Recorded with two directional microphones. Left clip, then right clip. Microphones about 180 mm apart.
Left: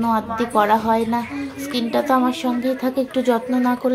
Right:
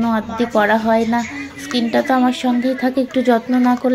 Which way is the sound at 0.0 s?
5° right (ahead or behind).